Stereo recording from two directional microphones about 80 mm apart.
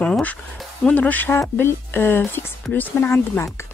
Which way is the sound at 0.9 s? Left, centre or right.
Left.